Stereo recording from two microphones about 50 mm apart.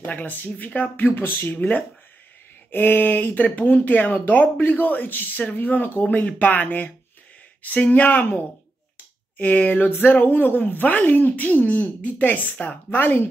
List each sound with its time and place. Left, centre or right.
0.0 s speech: left
9.4 s speech: left